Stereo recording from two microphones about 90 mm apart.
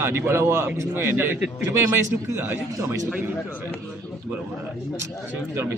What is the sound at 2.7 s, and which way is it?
Speech, 40° right (ahead or behind).